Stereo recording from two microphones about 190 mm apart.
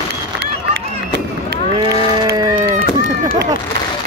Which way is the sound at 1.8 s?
20° right (ahead or behind).